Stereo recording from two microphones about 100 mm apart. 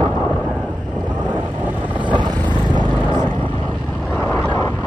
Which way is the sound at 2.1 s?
50° right (ahead or behind).